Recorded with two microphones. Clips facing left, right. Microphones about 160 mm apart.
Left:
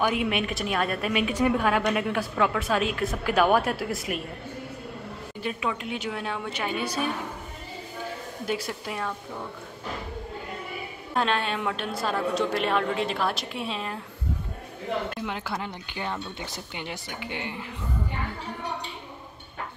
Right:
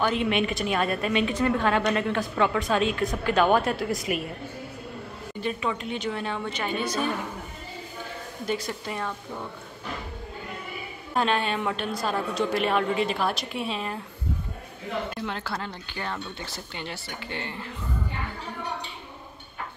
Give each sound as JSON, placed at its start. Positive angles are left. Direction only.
{"t": 0.0, "sound": "a woman's voice", "side_deg": 10}
{"t": 5.4, "sound": "a woman's voice", "side_deg": 5}
{"t": 8.5, "sound": "a woman's voice", "side_deg": 5}
{"t": 11.1, "sound": "a woman's voice", "side_deg": 0}
{"t": 15.2, "sound": "speech", "side_deg": 15}